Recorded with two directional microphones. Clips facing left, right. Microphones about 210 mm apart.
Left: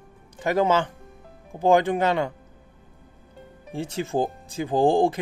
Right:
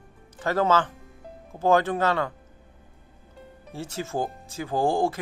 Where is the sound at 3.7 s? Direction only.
15° left (ahead or behind).